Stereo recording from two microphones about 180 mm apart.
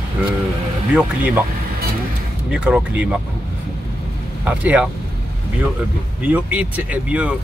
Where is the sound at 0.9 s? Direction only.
10° right (ahead or behind).